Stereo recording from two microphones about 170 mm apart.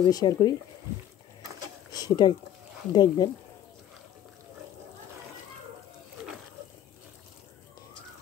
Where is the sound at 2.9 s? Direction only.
25° left (ahead or behind).